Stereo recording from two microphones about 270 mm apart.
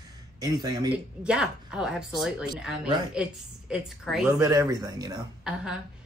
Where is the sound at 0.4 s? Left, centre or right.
Centre.